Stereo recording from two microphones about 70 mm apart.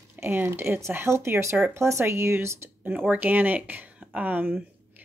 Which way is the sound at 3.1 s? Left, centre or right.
Right.